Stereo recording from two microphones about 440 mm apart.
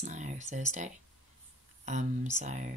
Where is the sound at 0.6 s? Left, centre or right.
Centre.